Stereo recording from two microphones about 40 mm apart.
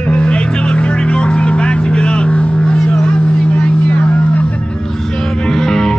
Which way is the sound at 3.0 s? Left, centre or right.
Left.